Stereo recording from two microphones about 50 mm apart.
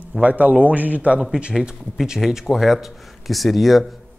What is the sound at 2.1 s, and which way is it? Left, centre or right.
Speech, centre.